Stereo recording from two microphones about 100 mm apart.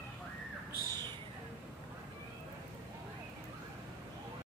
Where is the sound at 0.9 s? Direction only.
45° right (ahead or behind).